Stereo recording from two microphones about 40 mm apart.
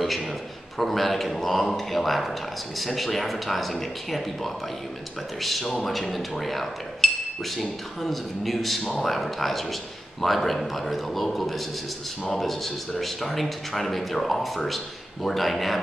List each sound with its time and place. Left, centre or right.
0.7 s speech: centre
7.0 s a sound: centre
7.5 s speech: centre